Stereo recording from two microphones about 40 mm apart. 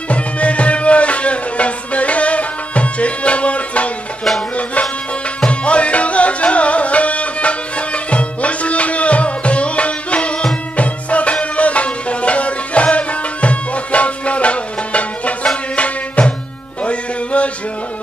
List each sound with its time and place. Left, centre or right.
0.1 s music: left
5.4 s music: left